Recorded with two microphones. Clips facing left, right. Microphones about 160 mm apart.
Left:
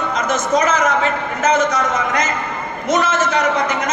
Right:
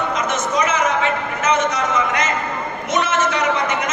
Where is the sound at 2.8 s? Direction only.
40° left (ahead or behind).